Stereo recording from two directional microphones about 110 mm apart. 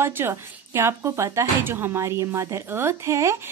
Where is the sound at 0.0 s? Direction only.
20° right (ahead or behind).